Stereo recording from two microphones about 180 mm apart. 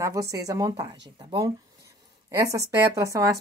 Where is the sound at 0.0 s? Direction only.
15° right (ahead or behind).